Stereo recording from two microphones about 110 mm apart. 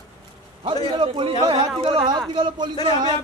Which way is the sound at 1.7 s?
45° right (ahead or behind).